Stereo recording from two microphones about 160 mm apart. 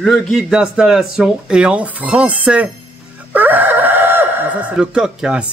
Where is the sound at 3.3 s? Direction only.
10° right (ahead or behind).